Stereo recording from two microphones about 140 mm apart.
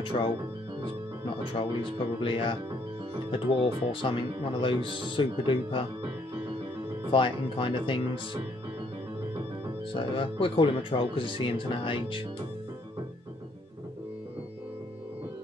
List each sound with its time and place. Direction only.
0.0 s speech: 40° left (ahead or behind)
1.5 s speech: 40° left (ahead or behind)
7.1 s speech: 40° left (ahead or behind)
9.9 s speech: 40° left (ahead or behind)